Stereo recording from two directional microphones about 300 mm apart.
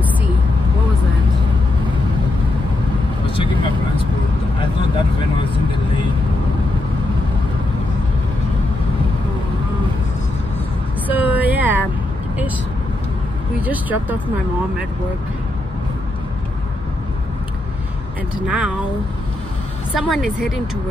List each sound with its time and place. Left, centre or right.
3.3 s vehicle: centre
11.1 s vehicle: centre
13.6 s vehicle: centre
18.5 s a woman's voice: centre
20.0 s a woman's voice: centre